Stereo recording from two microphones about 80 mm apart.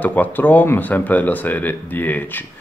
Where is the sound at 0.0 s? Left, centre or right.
Left.